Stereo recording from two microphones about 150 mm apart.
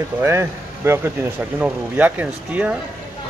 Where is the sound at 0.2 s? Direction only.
15° right (ahead or behind).